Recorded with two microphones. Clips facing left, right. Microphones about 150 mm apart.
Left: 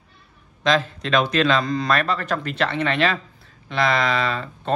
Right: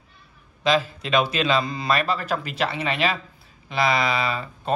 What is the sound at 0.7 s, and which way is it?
A man's voice, 5° right (ahead or behind).